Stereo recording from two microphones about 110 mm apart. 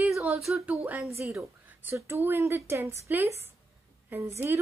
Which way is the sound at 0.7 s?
15° right (ahead or behind).